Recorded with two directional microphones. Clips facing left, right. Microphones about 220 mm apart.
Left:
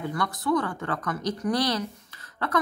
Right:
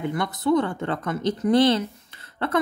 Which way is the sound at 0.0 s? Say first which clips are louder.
Right 4 dB; 25° right (ahead or behind).